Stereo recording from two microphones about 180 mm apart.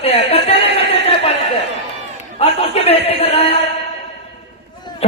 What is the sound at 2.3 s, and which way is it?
A man's voice, 35° left (ahead or behind).